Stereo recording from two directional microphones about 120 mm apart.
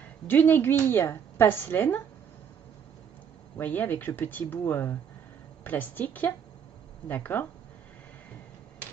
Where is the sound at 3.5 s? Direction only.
15° left (ahead or behind).